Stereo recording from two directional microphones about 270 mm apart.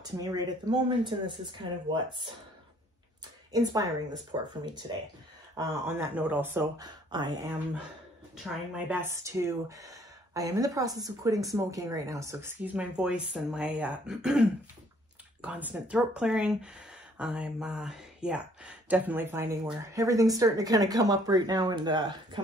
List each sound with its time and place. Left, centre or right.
0.2 s speech: centre
3.5 s speech: centre